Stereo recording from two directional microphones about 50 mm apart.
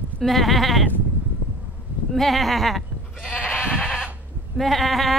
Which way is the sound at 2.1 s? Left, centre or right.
Centre.